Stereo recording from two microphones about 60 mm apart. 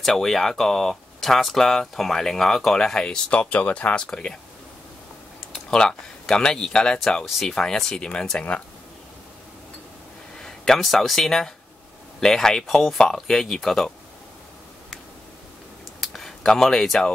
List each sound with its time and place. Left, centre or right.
0.0 s speech: centre
3.3 s speech: left
5.7 s speech: centre
10.4 s speech: centre
16.0 s a sound: centre